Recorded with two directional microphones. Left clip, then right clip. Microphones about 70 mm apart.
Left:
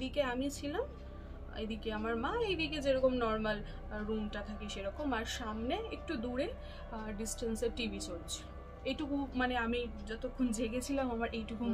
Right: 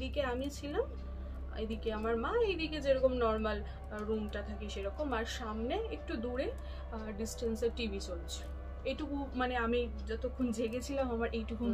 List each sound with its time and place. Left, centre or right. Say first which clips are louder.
0.0 s a woman's voice: left 1 dB; left